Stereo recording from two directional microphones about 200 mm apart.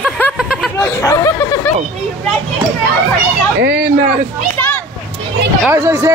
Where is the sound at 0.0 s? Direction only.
Centre (ahead or behind).